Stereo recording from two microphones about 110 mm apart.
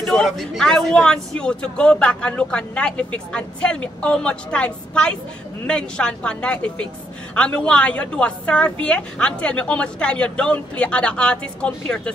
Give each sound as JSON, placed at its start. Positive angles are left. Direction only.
{"t": 0.0, "sound": "speech", "side_deg": 0}